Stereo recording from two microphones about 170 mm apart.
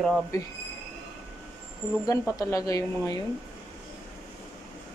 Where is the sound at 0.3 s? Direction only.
20° left (ahead or behind).